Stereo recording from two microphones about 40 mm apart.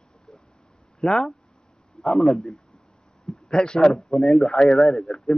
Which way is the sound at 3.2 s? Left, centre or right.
Centre.